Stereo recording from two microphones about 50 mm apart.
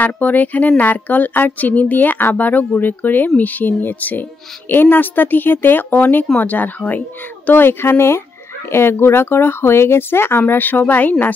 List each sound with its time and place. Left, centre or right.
0.0 s speech: left
7.4 s speech: left
10.4 s speech: left